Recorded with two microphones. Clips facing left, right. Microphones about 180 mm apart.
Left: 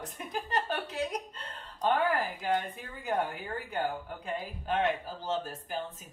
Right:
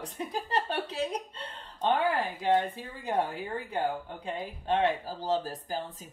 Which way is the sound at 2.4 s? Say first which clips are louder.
Right 5 dB; 30° right (ahead or behind).